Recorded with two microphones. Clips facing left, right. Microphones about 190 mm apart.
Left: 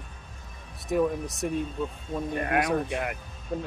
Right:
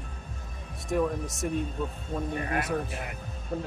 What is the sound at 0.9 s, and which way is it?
Speech, 5° left (ahead or behind).